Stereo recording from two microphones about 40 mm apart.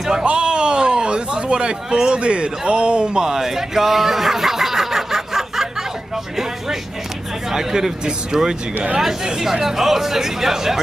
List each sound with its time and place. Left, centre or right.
0.2 s speech: right; by 5.7 s centre
7.5 s speech: centre